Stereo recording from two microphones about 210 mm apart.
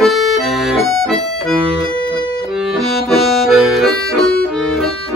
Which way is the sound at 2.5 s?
Centre (ahead or behind).